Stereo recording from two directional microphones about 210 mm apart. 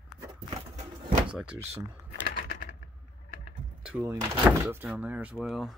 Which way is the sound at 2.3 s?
45° left (ahead or behind).